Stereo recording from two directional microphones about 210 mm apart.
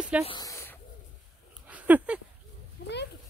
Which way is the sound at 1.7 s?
5° right (ahead or behind).